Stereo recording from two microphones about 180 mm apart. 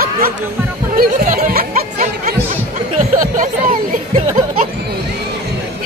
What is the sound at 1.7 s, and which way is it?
Music, 40° right (ahead or behind).